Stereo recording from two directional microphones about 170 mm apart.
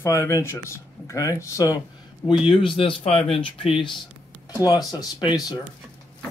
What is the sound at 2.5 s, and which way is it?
A man's voice, 30° left (ahead or behind).